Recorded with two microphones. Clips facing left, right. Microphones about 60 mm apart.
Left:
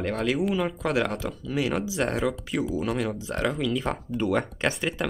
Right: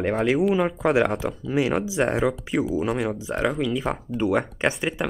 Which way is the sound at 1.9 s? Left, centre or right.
Centre.